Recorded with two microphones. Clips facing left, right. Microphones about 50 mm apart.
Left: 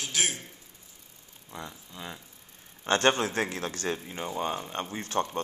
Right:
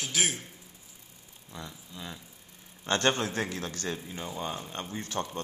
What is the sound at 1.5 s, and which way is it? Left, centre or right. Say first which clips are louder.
A man's voice: left 2 dB; centre.